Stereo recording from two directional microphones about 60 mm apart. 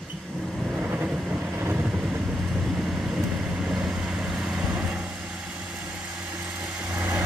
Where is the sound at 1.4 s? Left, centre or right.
Right.